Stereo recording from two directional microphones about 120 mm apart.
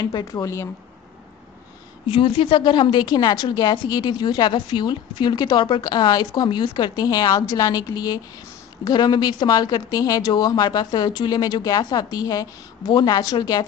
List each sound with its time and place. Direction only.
0.0 s speech: 35° left (ahead or behind)
2.0 s a woman's voice: 50° left (ahead or behind)